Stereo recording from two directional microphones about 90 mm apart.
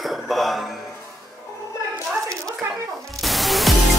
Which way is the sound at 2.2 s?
35° right (ahead or behind).